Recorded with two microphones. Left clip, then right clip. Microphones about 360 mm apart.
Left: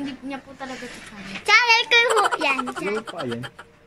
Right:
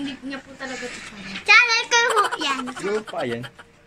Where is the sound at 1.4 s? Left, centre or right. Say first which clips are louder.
Right 1 dB; left.